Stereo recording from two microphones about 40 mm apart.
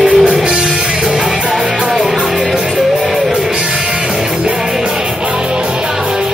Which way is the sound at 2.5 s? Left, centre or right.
Centre.